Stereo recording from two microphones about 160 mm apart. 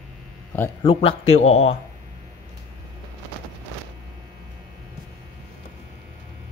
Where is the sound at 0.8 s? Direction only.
35° left (ahead or behind).